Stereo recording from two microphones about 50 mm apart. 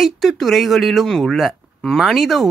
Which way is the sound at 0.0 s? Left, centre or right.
Centre.